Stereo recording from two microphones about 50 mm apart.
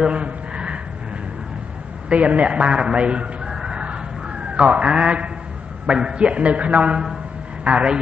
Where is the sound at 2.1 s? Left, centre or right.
Right.